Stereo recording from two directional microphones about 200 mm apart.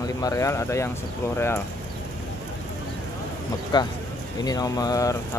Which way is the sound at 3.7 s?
20° left (ahead or behind).